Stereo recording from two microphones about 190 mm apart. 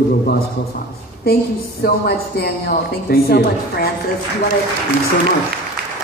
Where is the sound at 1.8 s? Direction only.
55° left (ahead or behind).